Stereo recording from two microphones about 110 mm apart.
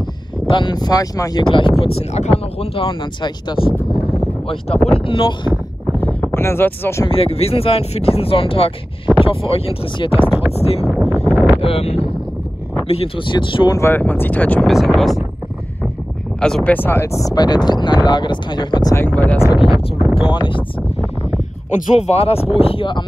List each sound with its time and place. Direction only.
0.5 s speech: 45° left (ahead or behind)
1.5 s speech: 55° left (ahead or behind)
4.5 s speech: 65° left (ahead or behind)
5.9 s a sound: 20° left (ahead or behind)
7.1 s speech: 60° left (ahead or behind)
13.7 s speech: 25° left (ahead or behind)
14.6 s speech: centre (ahead or behind)
16.3 s speech: 5° left (ahead or behind)
16.7 s speech: 20° left (ahead or behind); by 18.9 s 40° left (ahead or behind)
19.0 s speech: 15° left (ahead or behind)
19.7 s a sound: 5° left (ahead or behind)
20.2 s speech: 50° left (ahead or behind)
21.6 s speech: 90° left; by 23.0 s 50° left (ahead or behind)